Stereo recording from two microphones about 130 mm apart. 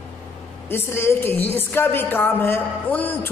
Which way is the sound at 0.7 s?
20° left (ahead or behind).